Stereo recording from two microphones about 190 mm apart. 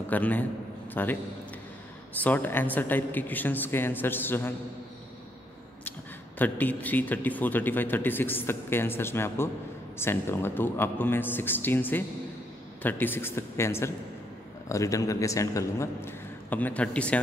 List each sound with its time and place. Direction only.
0.1 s speech: 10° left (ahead or behind)
2.1 s speech: 10° left (ahead or behind)
5.9 s speech: 10° left (ahead or behind)